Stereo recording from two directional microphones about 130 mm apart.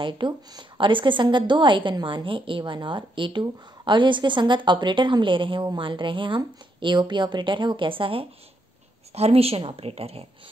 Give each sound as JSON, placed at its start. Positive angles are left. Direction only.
{"t": 0.0, "sound": "a woman's voice", "side_deg": -40}